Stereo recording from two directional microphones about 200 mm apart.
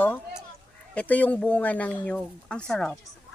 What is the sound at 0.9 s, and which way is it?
Speech, 10° left (ahead or behind).